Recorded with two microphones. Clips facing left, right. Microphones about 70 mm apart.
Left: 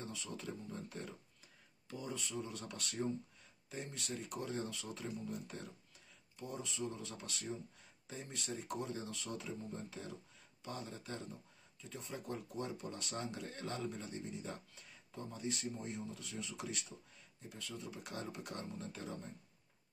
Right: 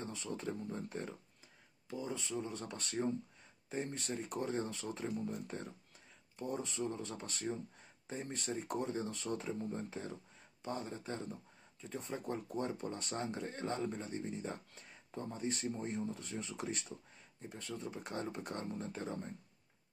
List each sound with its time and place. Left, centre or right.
0.0 s speech: right